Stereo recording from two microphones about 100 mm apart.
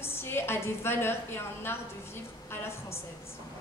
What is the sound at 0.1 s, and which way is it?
A woman's voice, 25° left (ahead or behind).